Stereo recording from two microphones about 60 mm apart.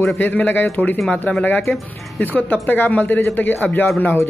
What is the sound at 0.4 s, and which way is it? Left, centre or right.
Speech, left.